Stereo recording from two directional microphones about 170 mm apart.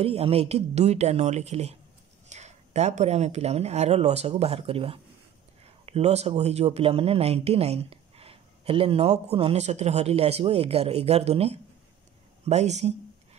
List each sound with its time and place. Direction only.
0.0 s speech: 35° right (ahead or behind)